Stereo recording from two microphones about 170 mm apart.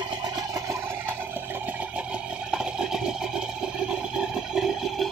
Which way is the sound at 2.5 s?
5° right (ahead or behind).